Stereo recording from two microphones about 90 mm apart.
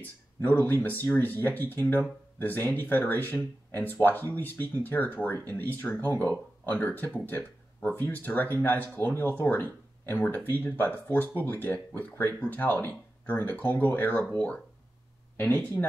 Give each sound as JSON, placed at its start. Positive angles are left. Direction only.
{"t": 0.0, "sound": "speech", "side_deg": 20}